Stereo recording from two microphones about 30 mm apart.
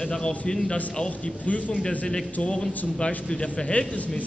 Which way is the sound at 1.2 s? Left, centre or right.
Left.